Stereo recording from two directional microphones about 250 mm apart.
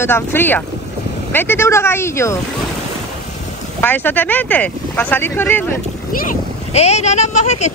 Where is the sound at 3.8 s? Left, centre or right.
Centre.